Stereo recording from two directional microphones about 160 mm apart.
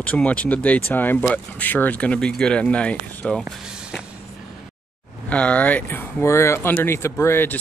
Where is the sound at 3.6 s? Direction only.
5° right (ahead or behind).